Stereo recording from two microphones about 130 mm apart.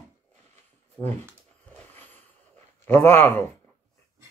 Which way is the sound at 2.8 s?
15° left (ahead or behind).